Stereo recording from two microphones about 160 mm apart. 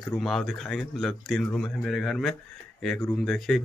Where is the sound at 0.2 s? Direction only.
Centre (ahead or behind).